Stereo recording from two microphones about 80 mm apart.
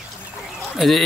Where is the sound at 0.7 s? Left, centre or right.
Centre.